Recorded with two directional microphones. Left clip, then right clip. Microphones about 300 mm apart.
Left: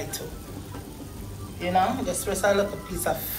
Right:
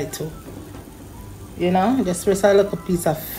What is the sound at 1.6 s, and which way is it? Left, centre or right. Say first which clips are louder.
Speech: right 4 dB; right.